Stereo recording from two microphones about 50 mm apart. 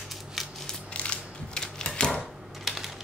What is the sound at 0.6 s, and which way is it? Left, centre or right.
Crushing, left.